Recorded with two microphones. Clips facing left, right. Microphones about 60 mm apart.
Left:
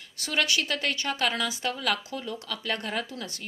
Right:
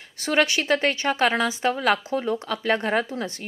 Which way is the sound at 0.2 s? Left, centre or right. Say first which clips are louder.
Right 6 dB; right.